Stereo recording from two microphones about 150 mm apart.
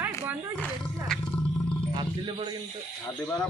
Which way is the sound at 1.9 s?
30° right (ahead or behind).